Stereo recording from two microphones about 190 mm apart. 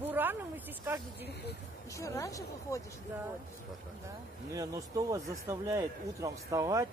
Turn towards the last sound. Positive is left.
turn(degrees=-15)  # may be behind; listen again after turning